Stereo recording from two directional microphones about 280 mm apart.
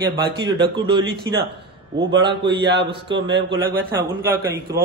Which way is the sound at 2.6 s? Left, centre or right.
Right.